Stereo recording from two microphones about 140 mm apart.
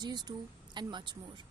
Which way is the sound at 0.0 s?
30° right (ahead or behind).